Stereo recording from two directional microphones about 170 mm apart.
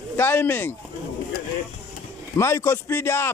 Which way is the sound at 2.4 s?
15° left (ahead or behind).